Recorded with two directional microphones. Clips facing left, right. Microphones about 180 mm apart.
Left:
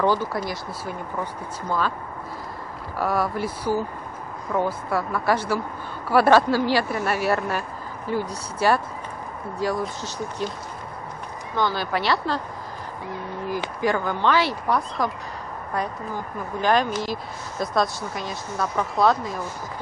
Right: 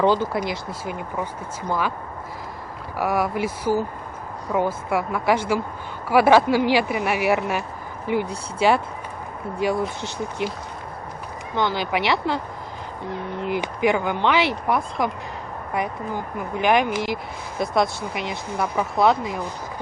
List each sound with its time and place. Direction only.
0.0 s speech: 20° right (ahead or behind)
3.0 s speech: 10° right (ahead or behind)
11.5 s speech: 20° right (ahead or behind)
13.4 s speech: 20° right (ahead or behind)
16.3 s speech: 15° right (ahead or behind)